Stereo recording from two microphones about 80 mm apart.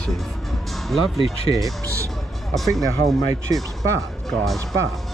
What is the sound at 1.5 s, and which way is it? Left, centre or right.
Speech, right.